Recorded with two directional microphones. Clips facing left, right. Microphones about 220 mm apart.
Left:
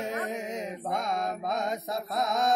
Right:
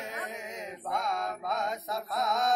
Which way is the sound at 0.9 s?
20° left (ahead or behind).